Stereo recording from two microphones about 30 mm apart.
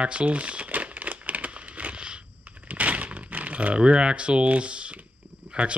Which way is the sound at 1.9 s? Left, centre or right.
Right.